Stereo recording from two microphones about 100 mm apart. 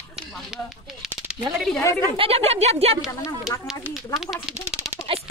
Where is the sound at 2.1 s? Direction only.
80° right.